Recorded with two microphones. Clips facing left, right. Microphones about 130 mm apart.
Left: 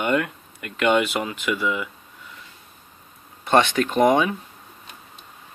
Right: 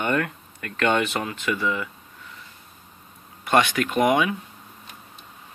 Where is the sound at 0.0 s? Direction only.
15° left (ahead or behind).